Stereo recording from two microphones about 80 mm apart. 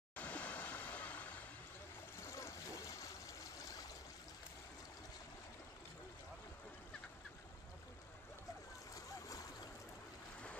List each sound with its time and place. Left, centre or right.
0.1 s waves: centre
2.1 s a sound: left
8.9 s boat: left